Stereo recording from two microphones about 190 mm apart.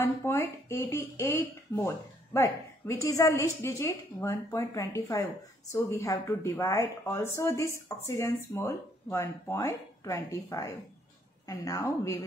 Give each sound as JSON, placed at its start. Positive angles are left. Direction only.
{"t": 0.0, "sound": "speech", "side_deg": 15}